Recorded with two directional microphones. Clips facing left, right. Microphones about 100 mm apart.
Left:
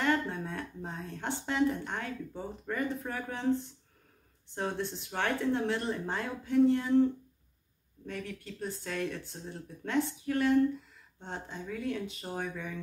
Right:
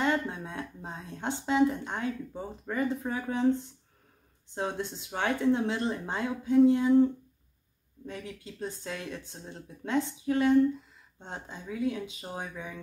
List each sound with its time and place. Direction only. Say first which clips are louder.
0.0 s speech: right 1 dB; 15° right (ahead or behind)
4.6 s speech: right 1 dB; 20° right (ahead or behind)
8.1 s speech: left 1 dB; 15° right (ahead or behind)